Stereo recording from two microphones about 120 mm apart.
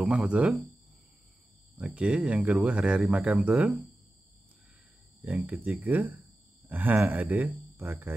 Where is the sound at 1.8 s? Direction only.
10° right (ahead or behind).